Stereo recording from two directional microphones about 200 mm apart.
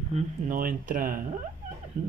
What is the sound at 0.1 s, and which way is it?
Speech, 45° right (ahead or behind).